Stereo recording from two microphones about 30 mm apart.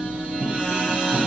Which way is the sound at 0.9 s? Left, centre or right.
Right.